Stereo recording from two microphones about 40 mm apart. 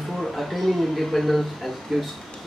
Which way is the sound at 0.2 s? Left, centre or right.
Centre.